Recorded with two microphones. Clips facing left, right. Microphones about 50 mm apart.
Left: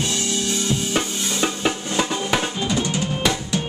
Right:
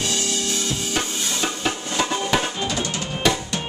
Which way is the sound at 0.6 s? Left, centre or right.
Left.